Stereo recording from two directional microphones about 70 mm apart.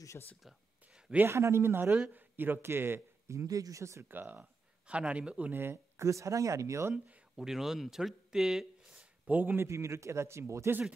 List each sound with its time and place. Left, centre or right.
0.4 s a sound: centre
1.2 s a man's voice: right
4.1 s speech: right
5.5 s speech: right
6.0 s speech: right
7.3 s speech: centre
8.9 s a sound: right
9.7 s speech: right